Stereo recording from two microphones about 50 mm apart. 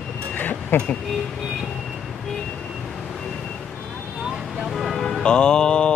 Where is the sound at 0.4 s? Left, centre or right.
Left.